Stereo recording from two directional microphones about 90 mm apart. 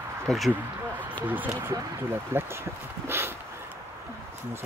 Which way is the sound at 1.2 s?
20° right (ahead or behind).